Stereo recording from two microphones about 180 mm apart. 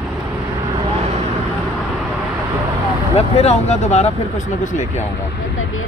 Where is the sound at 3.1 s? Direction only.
35° left (ahead or behind).